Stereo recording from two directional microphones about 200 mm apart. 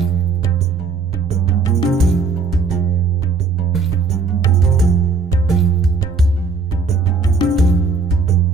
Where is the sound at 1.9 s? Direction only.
Centre (ahead or behind).